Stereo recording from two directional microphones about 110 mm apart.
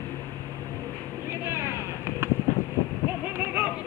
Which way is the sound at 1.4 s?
25° right (ahead or behind).